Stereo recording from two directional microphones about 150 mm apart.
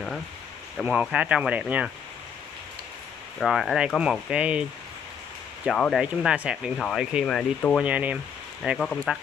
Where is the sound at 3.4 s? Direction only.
Centre (ahead or behind).